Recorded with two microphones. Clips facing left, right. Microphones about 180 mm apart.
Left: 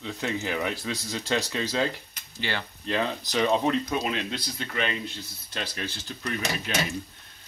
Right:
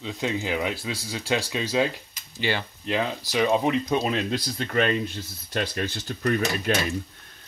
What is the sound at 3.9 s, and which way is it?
Speech, 35° right (ahead or behind).